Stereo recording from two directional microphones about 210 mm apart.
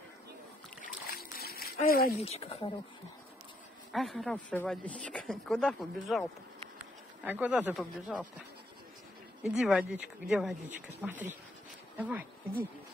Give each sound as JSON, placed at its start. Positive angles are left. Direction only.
{"t": 0.8, "sound": "splash", "side_deg": 45}
{"t": 2.1, "sound": "speech", "side_deg": 30}
{"t": 3.9, "sound": "speech", "side_deg": 0}
{"t": 7.2, "sound": "speech", "side_deg": -5}
{"t": 9.4, "sound": "speech", "side_deg": 0}